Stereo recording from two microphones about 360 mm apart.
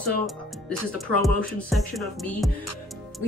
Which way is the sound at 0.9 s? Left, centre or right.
Centre.